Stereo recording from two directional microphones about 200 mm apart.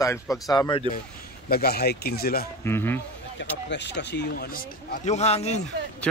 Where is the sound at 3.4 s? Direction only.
60° left (ahead or behind); by 5.6 s 30° left (ahead or behind).